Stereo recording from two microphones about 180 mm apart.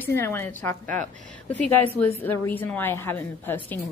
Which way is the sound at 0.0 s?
10° left (ahead or behind).